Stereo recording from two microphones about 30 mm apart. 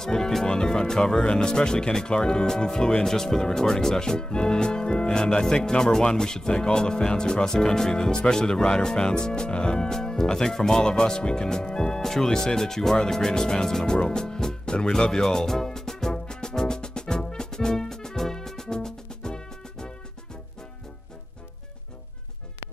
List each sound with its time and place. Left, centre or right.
0.0 s speech: centre
13.8 s music: left